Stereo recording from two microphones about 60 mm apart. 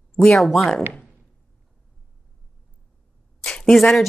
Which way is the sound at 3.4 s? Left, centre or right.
Centre.